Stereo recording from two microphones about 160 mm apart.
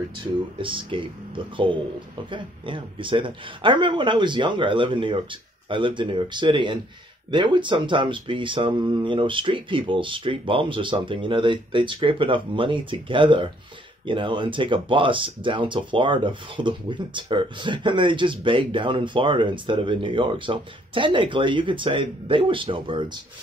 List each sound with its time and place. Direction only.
0.6 s speech: 35° right (ahead or behind)
2.3 s speech: 30° right (ahead or behind)